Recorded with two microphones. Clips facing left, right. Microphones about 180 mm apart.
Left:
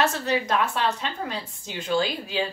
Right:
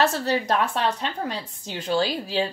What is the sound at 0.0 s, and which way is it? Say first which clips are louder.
Speech: right 2 dB; 35° right (ahead or behind).